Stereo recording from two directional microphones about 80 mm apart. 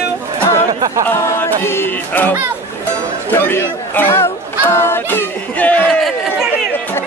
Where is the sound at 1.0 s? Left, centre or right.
Left.